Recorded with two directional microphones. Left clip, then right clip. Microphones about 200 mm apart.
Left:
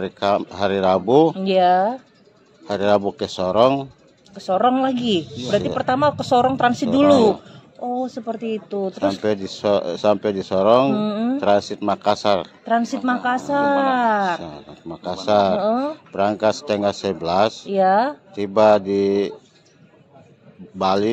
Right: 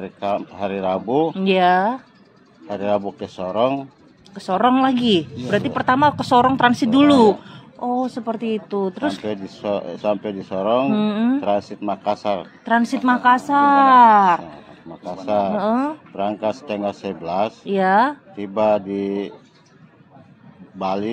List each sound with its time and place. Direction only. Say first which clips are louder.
0.0 s speech: left 4 dB; 50° left (ahead or behind)
1.4 s speech: even; 20° right (ahead or behind)
2.7 s speech: left 3 dB; 55° left (ahead or behind)
4.4 s speech: right 1 dB; 20° right (ahead or behind)
9.2 s speech: left 5 dB; 50° left (ahead or behind)
11.0 s speech: right 2 dB; 15° right (ahead or behind)
11.4 s speech: left 3 dB; 50° left (ahead or behind)
12.6 s speech: right 4 dB; 20° right (ahead or behind)
14.4 s speech: left 3 dB; 50° left (ahead or behind)
15.6 s speech: even; 20° right (ahead or behind)
16.2 s speech: left 4 dB; 50° left (ahead or behind)
17.6 s speech: right 4 dB; 20° right (ahead or behind)
18.3 s speech: left 4 dB; 50° left (ahead or behind)
20.8 s speech: left 4 dB; 50° left (ahead or behind)